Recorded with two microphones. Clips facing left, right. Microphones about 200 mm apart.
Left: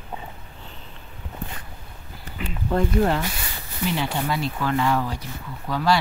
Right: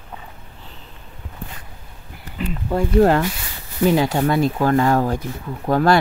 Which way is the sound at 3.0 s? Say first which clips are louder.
Right 10 dB; 55° right (ahead or behind).